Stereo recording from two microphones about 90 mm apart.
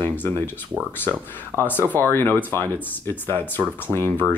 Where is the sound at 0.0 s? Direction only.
20° left (ahead or behind).